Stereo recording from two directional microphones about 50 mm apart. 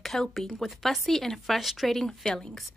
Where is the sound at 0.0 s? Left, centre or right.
Centre.